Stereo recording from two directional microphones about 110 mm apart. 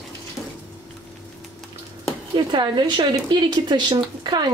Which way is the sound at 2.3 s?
45° right (ahead or behind).